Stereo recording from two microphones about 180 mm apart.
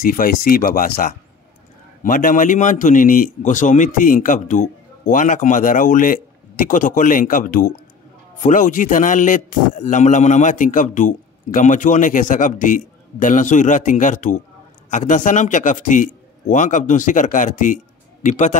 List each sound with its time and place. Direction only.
0.0 s a man's voice: 50° left (ahead or behind)